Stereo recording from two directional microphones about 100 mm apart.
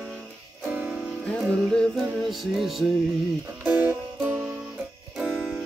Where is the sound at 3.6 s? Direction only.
20° right (ahead or behind).